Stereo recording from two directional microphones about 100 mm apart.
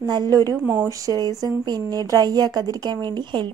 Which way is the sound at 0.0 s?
40° right (ahead or behind).